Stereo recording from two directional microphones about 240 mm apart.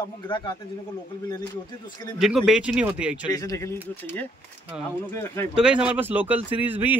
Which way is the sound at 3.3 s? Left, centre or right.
Centre.